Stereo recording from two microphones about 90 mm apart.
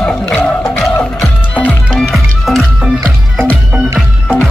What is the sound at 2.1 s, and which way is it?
Music, centre (ahead or behind).